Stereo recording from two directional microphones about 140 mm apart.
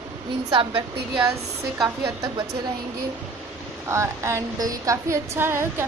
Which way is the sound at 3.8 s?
20° right (ahead or behind).